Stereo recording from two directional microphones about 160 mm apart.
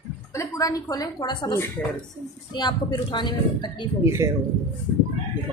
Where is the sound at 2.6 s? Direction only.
25° left (ahead or behind).